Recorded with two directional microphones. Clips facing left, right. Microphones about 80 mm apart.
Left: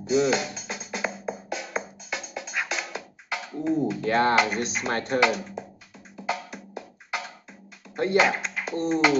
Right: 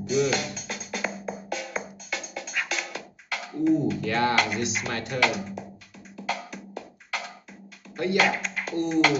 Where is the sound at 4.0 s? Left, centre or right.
Left.